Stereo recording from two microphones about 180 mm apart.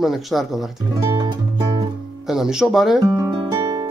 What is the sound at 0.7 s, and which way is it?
Music, 20° right (ahead or behind).